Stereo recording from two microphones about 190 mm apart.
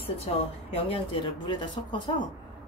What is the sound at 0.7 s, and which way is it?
Speech, 30° left (ahead or behind).